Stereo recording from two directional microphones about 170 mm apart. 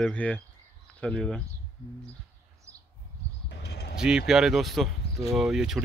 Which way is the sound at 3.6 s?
70° left (ahead or behind).